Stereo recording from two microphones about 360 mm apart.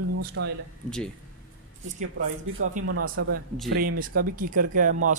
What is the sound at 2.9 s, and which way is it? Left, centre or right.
Speech, right.